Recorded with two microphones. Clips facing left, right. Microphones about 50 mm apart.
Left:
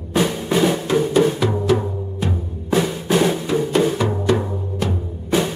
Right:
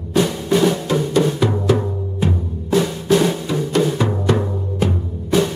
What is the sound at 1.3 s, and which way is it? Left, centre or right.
Music, centre.